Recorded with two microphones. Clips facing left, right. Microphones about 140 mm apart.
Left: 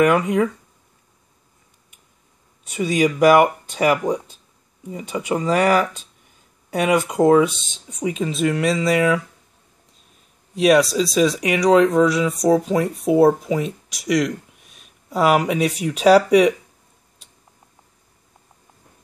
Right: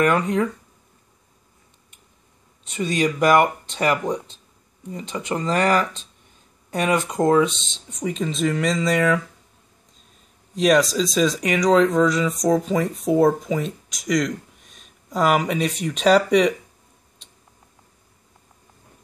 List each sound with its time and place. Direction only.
0.0 s speech: 10° left (ahead or behind)
2.6 s speech: 10° left (ahead or behind)
10.5 s speech: 5° left (ahead or behind)
17.2 s tick-tock: 5° left (ahead or behind)